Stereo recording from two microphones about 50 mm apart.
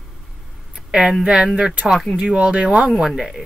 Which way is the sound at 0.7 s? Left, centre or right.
Centre.